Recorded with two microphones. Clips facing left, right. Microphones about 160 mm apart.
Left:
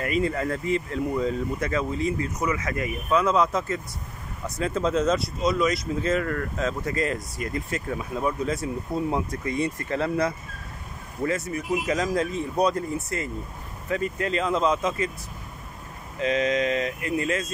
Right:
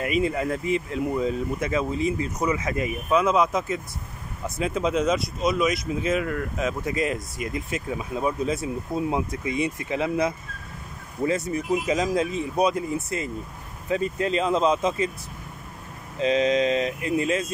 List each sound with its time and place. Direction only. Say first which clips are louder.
0.0 s speech: right 1 dB; 15° right (ahead or behind)
16.2 s speech: right 3 dB; 25° right (ahead or behind)